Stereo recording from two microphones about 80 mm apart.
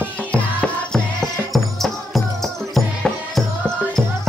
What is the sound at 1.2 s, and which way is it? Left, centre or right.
Music, centre.